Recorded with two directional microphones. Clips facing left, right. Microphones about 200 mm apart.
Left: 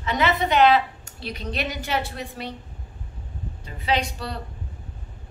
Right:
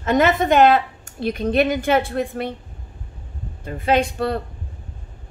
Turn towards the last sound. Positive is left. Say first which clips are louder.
# right 7 dB
turn(degrees=-55)  # may be behind; listen again after turning